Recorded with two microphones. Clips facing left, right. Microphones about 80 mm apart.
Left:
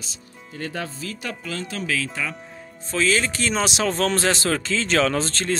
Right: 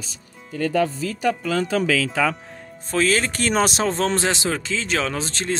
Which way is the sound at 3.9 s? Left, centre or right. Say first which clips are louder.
Even; right.